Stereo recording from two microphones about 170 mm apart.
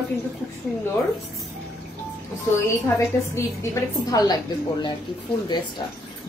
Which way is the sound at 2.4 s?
15° left (ahead or behind).